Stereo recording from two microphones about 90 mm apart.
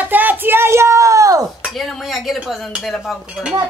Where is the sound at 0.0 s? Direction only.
20° right (ahead or behind); by 1.4 s 40° right (ahead or behind).